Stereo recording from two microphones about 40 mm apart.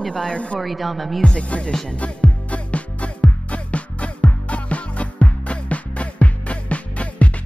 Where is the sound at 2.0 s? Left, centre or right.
Left.